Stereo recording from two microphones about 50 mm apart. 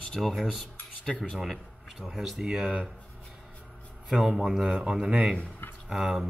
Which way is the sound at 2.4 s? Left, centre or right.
Right.